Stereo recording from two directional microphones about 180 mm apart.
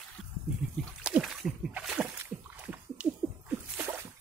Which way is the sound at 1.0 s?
5° right (ahead or behind).